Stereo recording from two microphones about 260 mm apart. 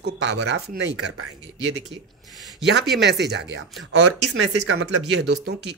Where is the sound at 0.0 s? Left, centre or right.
Right.